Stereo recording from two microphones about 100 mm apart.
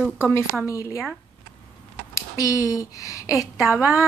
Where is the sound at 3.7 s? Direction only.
20° right (ahead or behind).